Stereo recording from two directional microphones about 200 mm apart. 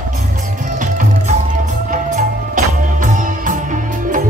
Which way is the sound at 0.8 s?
40° right (ahead or behind).